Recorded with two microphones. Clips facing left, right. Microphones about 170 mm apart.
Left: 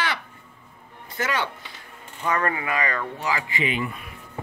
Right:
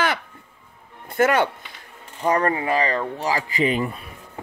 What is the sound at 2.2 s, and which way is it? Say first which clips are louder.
A child's voice: right 5 dB; 35° right (ahead or behind).